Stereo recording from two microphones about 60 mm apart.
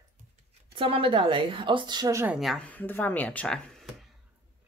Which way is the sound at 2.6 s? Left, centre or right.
Left.